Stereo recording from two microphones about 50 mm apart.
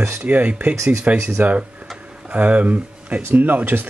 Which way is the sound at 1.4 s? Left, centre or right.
Right.